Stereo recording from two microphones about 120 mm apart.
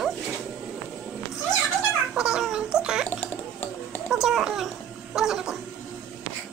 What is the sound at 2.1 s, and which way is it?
Gargling, 5° right (ahead or behind).